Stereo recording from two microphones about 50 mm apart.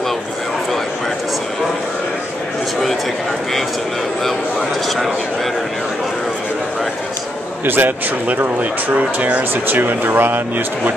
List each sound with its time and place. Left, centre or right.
4.2 s speech: centre
7.6 s speech: right
8.4 s speech: right
9.5 s speech: right